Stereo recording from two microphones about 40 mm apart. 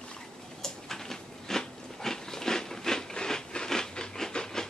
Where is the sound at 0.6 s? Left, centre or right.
Centre.